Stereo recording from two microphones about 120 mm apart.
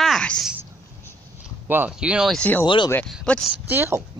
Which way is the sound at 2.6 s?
40° left (ahead or behind).